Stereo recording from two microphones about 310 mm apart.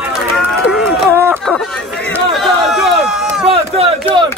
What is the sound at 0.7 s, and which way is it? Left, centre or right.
Speech, centre.